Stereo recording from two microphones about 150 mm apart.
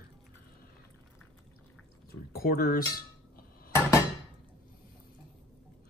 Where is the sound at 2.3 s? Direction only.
80° left.